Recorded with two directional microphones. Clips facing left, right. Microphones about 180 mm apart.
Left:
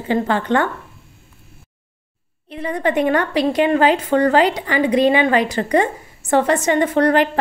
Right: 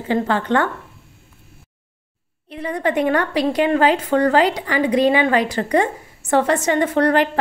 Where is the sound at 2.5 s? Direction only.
25° left (ahead or behind).